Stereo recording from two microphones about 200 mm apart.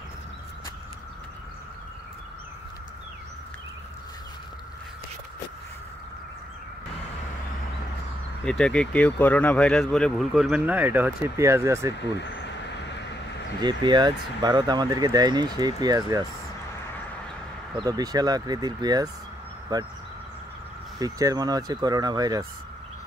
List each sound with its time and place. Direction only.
8.5 s speech: 5° left (ahead or behind); by 11.9 s 15° right (ahead or behind)
13.6 s speech: 20° right (ahead or behind)
17.7 s speech: 20° right (ahead or behind)
21.0 s speech: 20° right (ahead or behind)